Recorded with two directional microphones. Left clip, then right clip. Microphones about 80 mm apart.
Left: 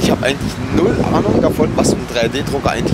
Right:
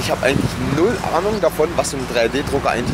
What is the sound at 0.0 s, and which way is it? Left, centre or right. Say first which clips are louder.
Speech: left 2 dB; centre.